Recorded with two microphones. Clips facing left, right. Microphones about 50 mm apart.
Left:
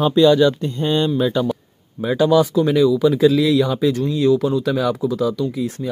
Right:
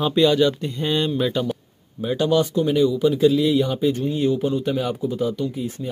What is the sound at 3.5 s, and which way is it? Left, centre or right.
Speech, left.